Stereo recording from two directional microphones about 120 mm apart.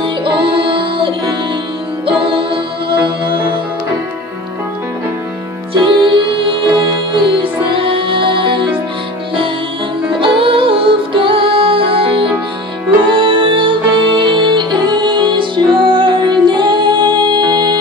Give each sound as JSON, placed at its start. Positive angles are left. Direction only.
{"t": 0.0, "sound": "music", "side_deg": -45}
{"t": 5.8, "sound": "music", "side_deg": -40}
{"t": 10.2, "sound": "music", "side_deg": -45}